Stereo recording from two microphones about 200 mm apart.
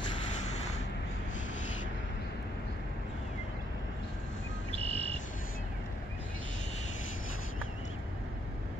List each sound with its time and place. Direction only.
4.7 s cricket: 30° right (ahead or behind)